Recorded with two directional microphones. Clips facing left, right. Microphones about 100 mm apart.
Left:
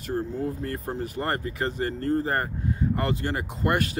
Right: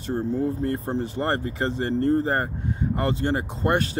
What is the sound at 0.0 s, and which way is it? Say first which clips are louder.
Speech: right 4 dB; 25° right (ahead or behind).